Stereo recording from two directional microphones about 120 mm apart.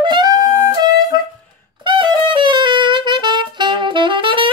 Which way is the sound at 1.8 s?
45° right (ahead or behind).